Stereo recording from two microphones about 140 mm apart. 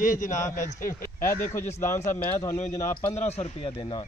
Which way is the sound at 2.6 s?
20° left (ahead or behind).